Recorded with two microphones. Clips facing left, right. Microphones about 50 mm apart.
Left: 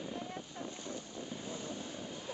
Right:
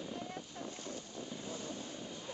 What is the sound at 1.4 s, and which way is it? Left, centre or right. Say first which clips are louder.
Vehicle: left 1 dB; left.